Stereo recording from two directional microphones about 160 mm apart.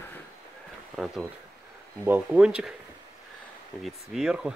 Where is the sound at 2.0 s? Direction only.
10° right (ahead or behind).